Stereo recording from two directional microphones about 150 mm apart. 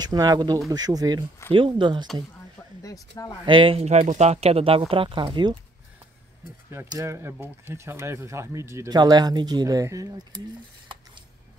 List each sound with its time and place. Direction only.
0.0 s speech: 25° right (ahead or behind)
2.8 s speech: 25° left (ahead or behind)
3.4 s speech: 35° right (ahead or behind)
6.9 s speech: 20° right (ahead or behind)